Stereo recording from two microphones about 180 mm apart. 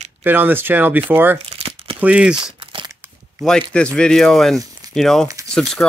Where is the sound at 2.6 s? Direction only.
30° right (ahead or behind).